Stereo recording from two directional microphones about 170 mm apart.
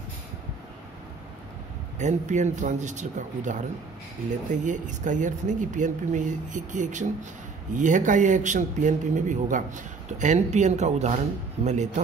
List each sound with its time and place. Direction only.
2.0 s speech: 45° right (ahead or behind)